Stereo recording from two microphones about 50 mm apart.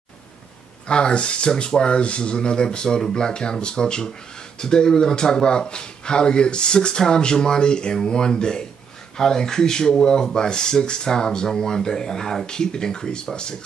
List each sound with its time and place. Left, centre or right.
0.8 s speech: centre